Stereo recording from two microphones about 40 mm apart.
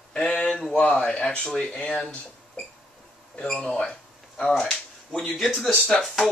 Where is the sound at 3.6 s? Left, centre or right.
Left.